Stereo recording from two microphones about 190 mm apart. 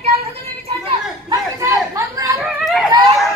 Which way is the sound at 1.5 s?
15° right (ahead or behind).